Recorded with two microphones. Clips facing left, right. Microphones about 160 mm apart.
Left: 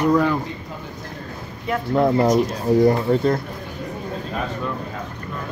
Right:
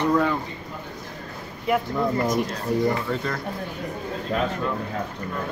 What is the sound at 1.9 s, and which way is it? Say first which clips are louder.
Speech: left 7 dB; 75° left (ahead or behind).